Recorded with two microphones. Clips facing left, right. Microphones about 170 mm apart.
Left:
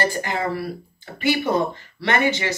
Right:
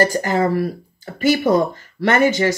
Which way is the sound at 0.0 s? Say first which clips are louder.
Right 7 dB; 40° right (ahead or behind).